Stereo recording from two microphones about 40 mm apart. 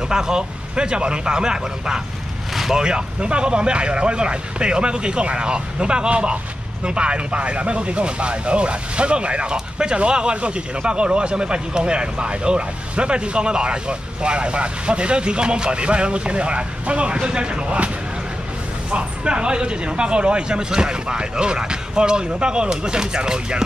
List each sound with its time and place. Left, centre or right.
0.1 s speech: centre
2.5 s vehicle: centre
2.8 s speech: right